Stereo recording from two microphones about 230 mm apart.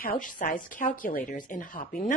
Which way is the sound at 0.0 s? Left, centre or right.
Left.